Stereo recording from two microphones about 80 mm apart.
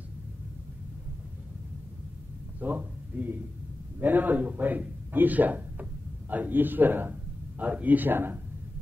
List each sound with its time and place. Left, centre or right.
2.6 s a man's voice: right